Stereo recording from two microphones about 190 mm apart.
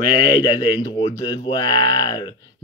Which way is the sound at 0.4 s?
25° left (ahead or behind).